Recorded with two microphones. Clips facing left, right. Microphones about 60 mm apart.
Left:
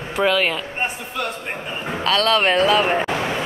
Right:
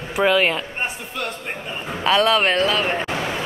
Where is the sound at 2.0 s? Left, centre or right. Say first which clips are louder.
Right 2 dB; centre.